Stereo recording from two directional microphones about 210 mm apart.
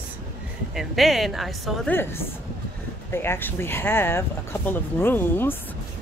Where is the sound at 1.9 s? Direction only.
10° left (ahead or behind).